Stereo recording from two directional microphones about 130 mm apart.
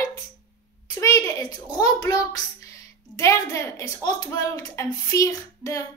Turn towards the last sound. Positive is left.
turn(degrees=25)  # may be behind; listen again after turning